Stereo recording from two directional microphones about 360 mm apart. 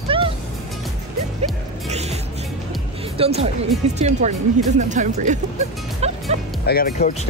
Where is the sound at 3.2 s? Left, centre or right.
Centre.